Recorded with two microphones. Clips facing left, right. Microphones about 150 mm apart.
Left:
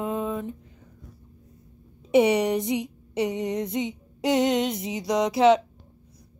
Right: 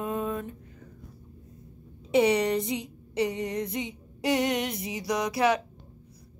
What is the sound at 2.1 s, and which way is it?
Speech, 20° left (ahead or behind).